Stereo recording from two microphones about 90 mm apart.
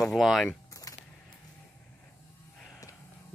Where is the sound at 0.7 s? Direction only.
40° left (ahead or behind).